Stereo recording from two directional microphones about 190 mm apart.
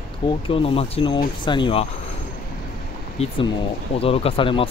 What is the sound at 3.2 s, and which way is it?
Speech, 35° left (ahead or behind).